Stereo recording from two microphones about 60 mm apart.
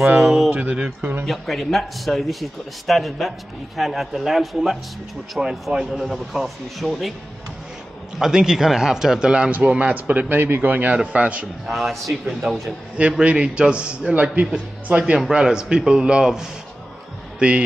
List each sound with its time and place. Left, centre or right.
0.2 s a man's voice: centre
0.5 s a man's voice: right
0.8 s speech: right
1.2 s a man's voice: centre
8.2 s a man's voice: centre
11.6 s a man's voice: centre
15.1 s speech: centre